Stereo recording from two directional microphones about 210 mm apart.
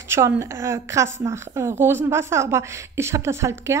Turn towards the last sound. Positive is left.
turn(degrees=-15)  # may be behind; listen again after turning